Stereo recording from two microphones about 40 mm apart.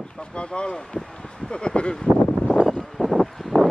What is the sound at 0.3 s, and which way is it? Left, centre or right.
Speech, left.